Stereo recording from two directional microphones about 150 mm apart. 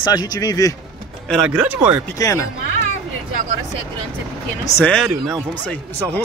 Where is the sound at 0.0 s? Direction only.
25° left (ahead or behind).